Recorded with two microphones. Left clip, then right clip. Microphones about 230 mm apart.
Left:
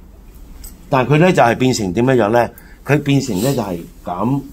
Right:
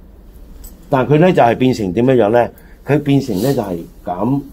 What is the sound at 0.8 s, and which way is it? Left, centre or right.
Speech, centre.